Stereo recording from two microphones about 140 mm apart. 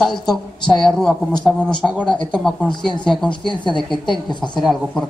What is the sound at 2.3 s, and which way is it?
Speech, 5° left (ahead or behind).